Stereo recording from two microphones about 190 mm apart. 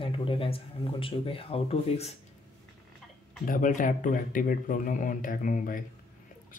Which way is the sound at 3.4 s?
45° left (ahead or behind).